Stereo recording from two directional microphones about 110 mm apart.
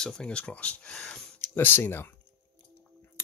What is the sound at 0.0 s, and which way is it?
Speech, 10° left (ahead or behind).